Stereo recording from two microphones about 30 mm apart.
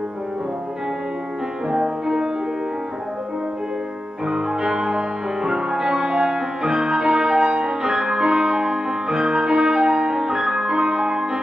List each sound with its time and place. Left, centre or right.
1.7 s music: right
4.3 s music: right
7.8 s music: right